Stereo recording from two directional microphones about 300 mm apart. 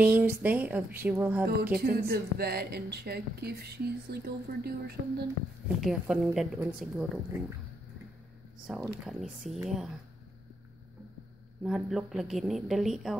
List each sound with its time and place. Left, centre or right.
0.0 s a woman's voice: centre
1.6 s speech: right
5.8 s a woman's voice: centre
8.6 s a woman's voice: centre
11.6 s a woman's voice: centre